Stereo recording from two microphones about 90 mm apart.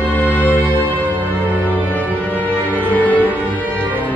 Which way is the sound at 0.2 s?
20° left (ahead or behind).